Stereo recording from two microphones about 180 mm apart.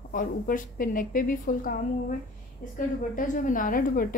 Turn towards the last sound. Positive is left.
turn(degrees=50)  # may be behind; listen again after turning